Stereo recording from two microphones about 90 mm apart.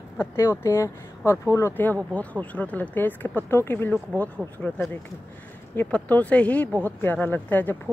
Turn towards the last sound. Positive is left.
turn(degrees=20)  # may be behind; listen again after turning